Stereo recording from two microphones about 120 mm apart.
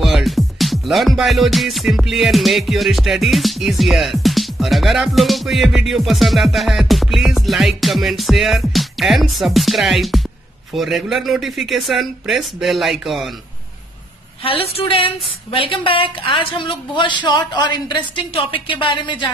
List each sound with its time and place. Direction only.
0.0 s music: centre (ahead or behind)
14.4 s speech: 50° left (ahead or behind)